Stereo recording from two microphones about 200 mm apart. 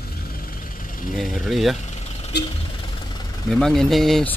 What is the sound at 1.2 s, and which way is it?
Speech, centre (ahead or behind).